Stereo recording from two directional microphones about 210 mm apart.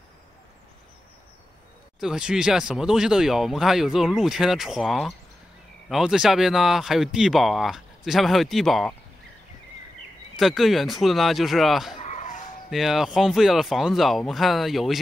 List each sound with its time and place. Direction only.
2.0 s speech: 5° right (ahead or behind)
10.3 s speech: centre (ahead or behind)
12.0 s dog: 35° left (ahead or behind)
12.6 s speech: centre (ahead or behind)